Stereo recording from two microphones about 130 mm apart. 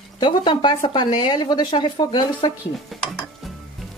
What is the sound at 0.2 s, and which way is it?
Speech, 40° left (ahead or behind).